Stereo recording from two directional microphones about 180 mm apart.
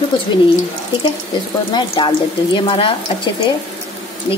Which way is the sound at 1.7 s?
25° left (ahead or behind).